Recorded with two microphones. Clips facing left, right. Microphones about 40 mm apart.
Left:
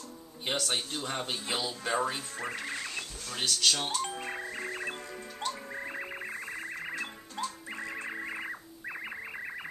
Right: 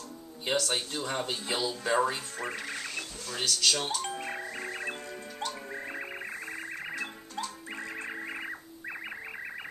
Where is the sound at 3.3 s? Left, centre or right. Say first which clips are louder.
Right 1 dB; centre.